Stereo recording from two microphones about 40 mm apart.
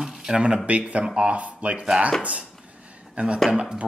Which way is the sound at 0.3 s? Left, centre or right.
Right.